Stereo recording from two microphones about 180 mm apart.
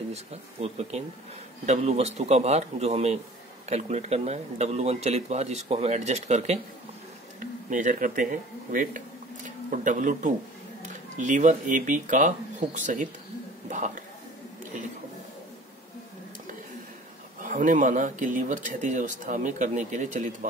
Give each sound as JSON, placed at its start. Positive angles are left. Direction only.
{"t": 0.1, "sound": "a man's voice", "side_deg": -35}
{"t": 17.4, "sound": "speech", "side_deg": -45}